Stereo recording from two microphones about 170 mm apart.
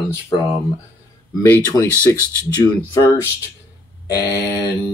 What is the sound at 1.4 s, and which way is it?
Speech, 20° left (ahead or behind).